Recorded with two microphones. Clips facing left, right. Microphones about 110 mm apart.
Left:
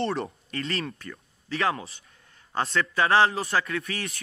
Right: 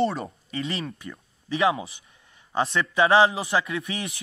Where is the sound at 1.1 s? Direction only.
15° right (ahead or behind).